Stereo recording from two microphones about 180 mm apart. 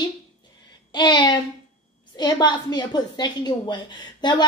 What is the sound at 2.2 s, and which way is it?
A woman's voice, 25° left (ahead or behind).